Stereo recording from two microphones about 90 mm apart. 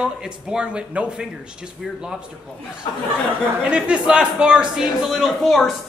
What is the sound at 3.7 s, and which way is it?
Speech, 10° right (ahead or behind).